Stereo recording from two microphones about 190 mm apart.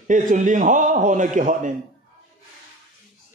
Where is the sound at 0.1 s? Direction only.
45° right (ahead or behind).